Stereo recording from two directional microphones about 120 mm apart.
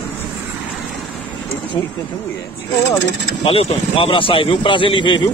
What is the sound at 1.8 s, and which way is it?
Speech, 40° left (ahead or behind).